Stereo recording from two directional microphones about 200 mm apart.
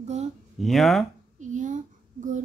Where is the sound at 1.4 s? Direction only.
40° right (ahead or behind).